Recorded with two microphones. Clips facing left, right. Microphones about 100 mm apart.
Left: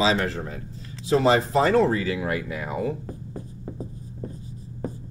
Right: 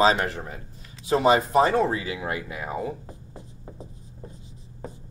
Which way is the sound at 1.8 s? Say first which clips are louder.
Left 3 dB; 20° right (ahead or behind).